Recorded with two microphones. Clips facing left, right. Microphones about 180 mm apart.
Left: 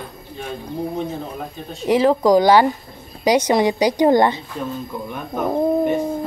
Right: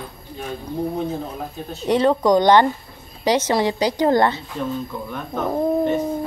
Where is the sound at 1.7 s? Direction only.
Centre (ahead or behind).